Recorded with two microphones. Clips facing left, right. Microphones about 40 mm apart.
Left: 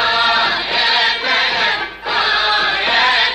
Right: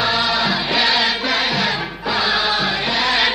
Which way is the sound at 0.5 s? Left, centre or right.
Centre.